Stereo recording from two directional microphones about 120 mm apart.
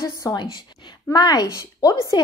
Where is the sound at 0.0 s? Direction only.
25° left (ahead or behind).